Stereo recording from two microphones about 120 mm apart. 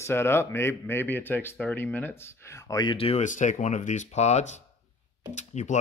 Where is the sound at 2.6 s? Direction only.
30° left (ahead or behind).